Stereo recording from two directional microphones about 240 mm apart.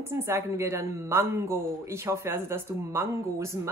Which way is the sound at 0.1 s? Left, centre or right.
Centre.